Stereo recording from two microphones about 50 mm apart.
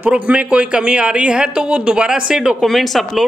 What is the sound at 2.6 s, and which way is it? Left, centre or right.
Speech, centre.